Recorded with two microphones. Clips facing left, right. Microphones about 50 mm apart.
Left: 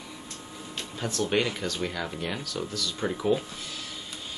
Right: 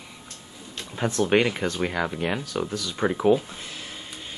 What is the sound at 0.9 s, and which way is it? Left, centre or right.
Speech, right.